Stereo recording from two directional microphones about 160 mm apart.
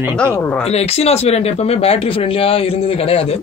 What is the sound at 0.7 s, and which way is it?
Speech, 40° left (ahead or behind).